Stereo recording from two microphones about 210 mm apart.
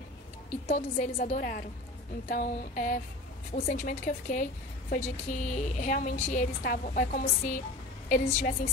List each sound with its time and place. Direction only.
0.7 s a woman's voice: 35° left (ahead or behind)